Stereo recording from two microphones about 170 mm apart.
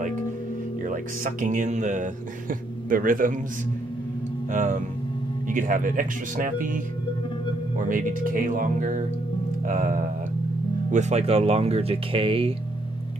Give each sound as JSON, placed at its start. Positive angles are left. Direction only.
{"t": 0.8, "sound": "a man's voice", "side_deg": -50}
{"t": 4.5, "sound": "speech", "side_deg": -50}
{"t": 10.9, "sound": "speech", "side_deg": -40}